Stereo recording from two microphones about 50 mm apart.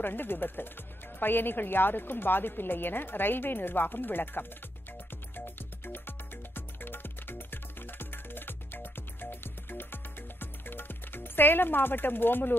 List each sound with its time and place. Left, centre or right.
0.0 s a woman's voice: left
5.3 s music: left